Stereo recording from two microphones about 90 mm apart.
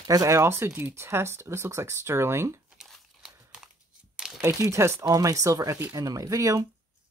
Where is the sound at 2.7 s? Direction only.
5° right (ahead or behind).